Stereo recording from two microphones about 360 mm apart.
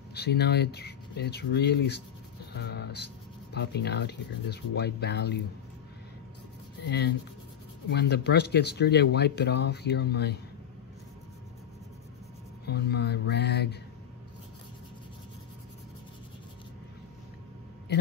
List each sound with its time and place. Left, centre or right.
0.1 s speech: left
6.8 s speech: left
12.6 s speech: left